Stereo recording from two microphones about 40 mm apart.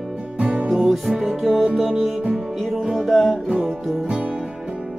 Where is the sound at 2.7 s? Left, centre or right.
Centre.